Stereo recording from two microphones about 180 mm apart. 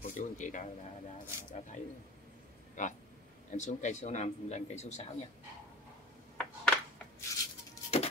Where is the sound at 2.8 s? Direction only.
45° left (ahead or behind).